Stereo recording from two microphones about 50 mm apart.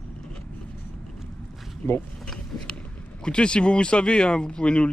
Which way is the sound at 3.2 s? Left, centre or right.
Centre.